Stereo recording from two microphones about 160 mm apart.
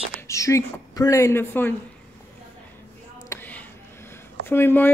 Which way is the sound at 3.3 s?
10° left (ahead or behind).